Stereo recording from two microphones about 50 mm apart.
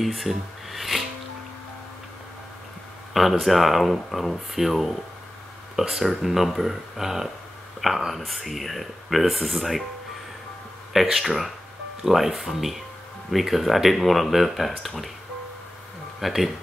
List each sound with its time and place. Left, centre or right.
0.0 s music: centre
3.1 s speech: centre
10.9 s speech: centre
16.2 s speech: centre